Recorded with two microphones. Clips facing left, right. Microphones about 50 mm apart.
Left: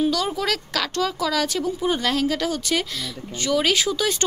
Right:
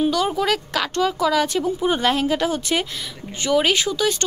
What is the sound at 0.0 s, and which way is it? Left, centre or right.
A child's voice, centre.